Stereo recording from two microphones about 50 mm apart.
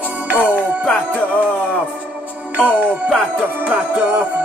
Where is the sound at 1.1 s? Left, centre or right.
Left.